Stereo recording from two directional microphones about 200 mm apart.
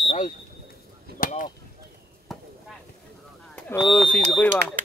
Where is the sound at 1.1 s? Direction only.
45° left (ahead or behind).